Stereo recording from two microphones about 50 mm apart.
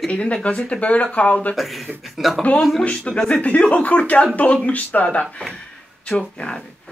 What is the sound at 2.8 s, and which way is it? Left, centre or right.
Speech, left.